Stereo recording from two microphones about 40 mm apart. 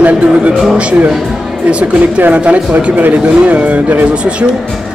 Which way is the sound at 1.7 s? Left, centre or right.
Right.